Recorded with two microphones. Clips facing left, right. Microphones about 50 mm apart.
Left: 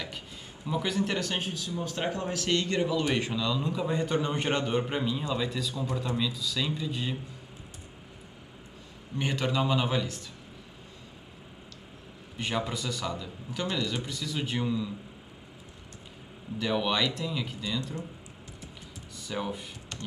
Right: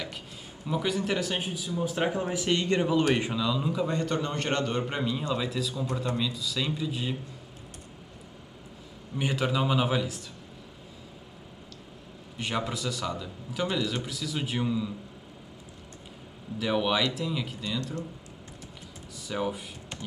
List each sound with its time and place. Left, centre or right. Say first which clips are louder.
0.7 s speech: right 1 dB; centre; by 3.1 s right
3.2 s speech: right 1 dB; centre
4.0 s a man's voice: left 1 dB; centre
9.2 s a man's voice: right 1 dB; centre
12.4 s a man's voice: even; centre
16.5 s a man's voice: right 2 dB; centre
19.1 s speech: right 3 dB; centre